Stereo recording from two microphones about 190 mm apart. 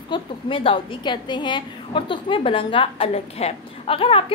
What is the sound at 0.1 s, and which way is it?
A woman's voice, 25° left (ahead or behind).